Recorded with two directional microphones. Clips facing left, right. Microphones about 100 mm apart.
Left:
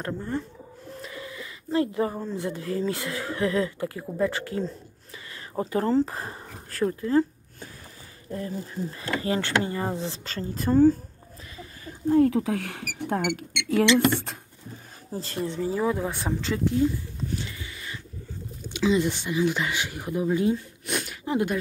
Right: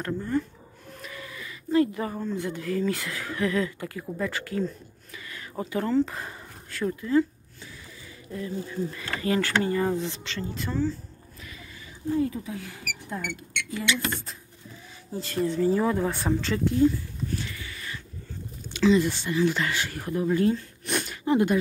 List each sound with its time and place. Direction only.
0.0 s speech: 25° left (ahead or behind)
8.3 s speech: 40° left (ahead or behind)
11.8 s speech: 60° left (ahead or behind)
15.1 s speech: 30° left (ahead or behind)
15.7 s speech: 5° left (ahead or behind)
17.4 s a sound: 20° left (ahead or behind)
18.7 s speech: 15° left (ahead or behind)
20.9 s a sound: 5° left (ahead or behind)